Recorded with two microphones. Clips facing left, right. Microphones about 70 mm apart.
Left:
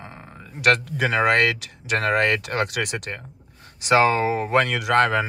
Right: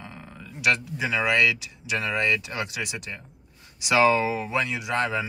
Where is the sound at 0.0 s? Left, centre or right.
Left.